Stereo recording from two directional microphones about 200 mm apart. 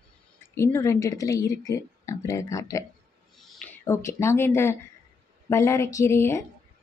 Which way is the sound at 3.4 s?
5° left (ahead or behind).